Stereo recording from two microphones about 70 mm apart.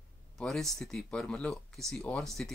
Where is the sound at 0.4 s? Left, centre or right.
Centre.